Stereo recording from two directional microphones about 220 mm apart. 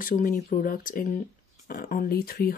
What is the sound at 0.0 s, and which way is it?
Speech, 40° left (ahead or behind).